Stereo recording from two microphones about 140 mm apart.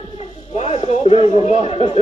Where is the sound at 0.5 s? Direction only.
45° left (ahead or behind).